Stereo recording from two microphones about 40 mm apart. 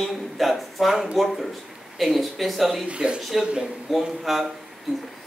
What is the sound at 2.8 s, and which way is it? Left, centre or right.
Speech, right.